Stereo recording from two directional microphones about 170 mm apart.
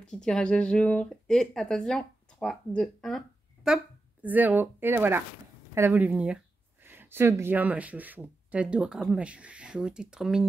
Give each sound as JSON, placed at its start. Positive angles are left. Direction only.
{"t": 0.0, "sound": "a woman's voice", "side_deg": 5}